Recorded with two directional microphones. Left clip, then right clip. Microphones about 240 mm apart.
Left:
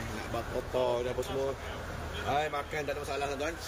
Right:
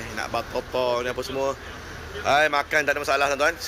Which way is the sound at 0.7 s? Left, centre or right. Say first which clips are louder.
Right 6 dB; right.